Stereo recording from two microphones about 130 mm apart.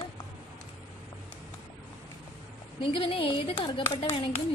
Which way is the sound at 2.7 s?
40° left (ahead or behind).